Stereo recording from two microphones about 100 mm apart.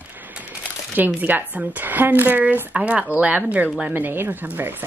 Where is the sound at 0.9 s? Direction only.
15° right (ahead or behind).